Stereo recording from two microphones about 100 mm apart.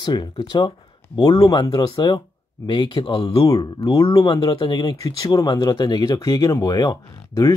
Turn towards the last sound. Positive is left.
turn(degrees=35)  # may be behind; listen again after turning